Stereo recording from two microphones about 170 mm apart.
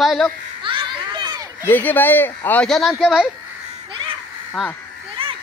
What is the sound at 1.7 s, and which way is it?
Speech, 10° left (ahead or behind).